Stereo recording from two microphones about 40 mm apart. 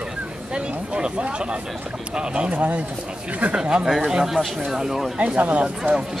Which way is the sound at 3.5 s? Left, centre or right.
Right.